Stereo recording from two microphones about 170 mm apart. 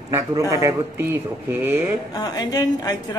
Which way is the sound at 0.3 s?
20° right (ahead or behind).